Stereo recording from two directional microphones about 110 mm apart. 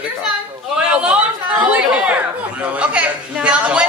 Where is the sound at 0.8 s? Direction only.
10° right (ahead or behind).